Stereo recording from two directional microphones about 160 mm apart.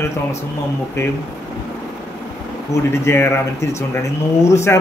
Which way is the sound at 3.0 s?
15° left (ahead or behind).